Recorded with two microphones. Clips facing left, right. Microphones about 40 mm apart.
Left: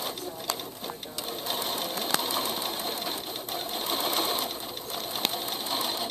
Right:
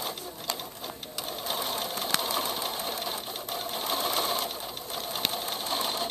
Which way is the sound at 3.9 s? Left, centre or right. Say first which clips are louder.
Even; left.